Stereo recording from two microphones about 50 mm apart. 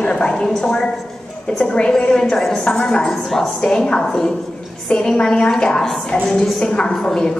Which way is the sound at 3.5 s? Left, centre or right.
Centre.